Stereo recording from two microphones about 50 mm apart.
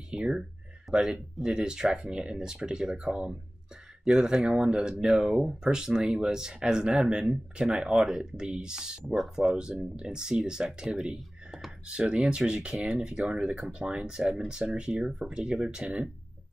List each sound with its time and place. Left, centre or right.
0.1 s a sound: centre
1.1 s speech: centre
9.0 s speech: centre
9.3 s speech: centre